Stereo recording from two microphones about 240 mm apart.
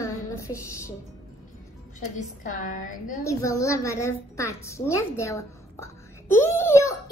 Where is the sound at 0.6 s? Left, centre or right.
Centre.